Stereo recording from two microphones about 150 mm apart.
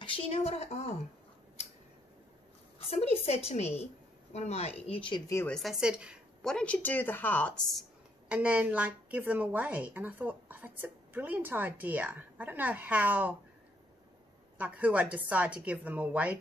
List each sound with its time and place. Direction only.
0.0 s speech: 40° left (ahead or behind)
2.9 s speech: 45° left (ahead or behind)
5.5 s a woman's voice: centre (ahead or behind)
6.5 s a woman's voice: 10° left (ahead or behind)
8.3 s a woman's voice: 10° right (ahead or behind)
14.6 s a woman's voice: 10° right (ahead or behind)